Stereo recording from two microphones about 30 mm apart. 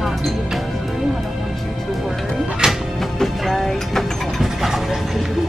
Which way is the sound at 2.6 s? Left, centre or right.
Right.